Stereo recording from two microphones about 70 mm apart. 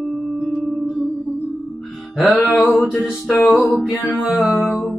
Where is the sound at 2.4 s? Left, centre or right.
Left.